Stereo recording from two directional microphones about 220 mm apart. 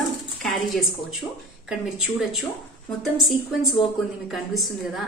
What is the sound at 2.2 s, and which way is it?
Speech, centre (ahead or behind).